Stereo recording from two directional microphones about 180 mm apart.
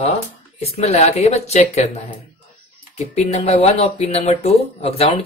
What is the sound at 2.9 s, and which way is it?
Speech, 35° left (ahead or behind).